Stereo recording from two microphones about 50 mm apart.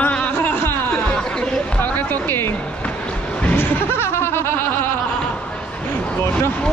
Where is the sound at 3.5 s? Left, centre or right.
Left.